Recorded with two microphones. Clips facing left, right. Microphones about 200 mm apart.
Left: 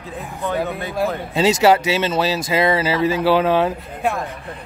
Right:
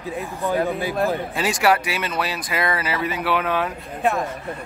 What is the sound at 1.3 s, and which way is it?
Speech, 25° left (ahead or behind).